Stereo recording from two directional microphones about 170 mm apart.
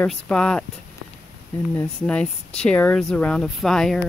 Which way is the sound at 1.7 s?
10° left (ahead or behind).